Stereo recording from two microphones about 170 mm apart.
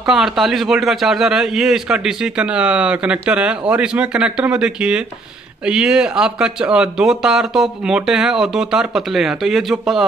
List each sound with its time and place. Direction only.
0.0 s a man's voice: centre (ahead or behind)